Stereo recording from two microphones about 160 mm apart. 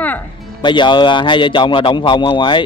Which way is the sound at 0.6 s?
30° left (ahead or behind).